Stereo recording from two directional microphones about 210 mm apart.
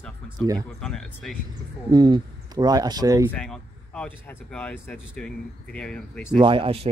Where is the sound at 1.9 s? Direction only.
20° right (ahead or behind).